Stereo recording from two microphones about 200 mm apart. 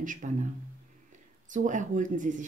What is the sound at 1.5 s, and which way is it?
Speech, 40° right (ahead or behind).